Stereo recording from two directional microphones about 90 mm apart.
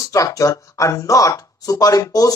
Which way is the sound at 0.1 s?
40° left (ahead or behind).